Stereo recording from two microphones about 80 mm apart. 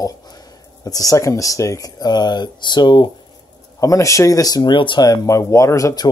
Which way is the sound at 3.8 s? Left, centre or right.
Left.